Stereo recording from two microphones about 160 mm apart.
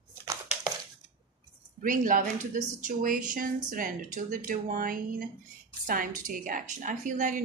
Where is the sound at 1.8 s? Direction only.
55° right (ahead or behind).